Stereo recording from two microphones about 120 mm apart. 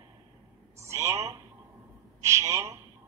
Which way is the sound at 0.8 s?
25° right (ahead or behind).